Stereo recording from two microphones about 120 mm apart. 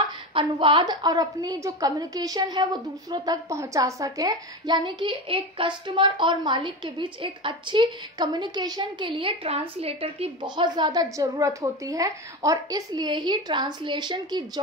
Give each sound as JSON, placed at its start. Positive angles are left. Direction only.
{"t": 0.4, "sound": "a woman's voice", "side_deg": -45}
{"t": 10.4, "sound": "a woman's voice", "side_deg": -40}